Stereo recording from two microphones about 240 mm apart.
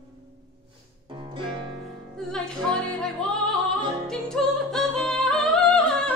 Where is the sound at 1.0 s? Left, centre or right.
Right.